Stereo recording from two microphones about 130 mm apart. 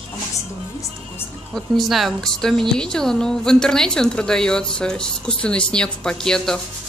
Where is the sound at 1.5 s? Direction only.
Centre (ahead or behind).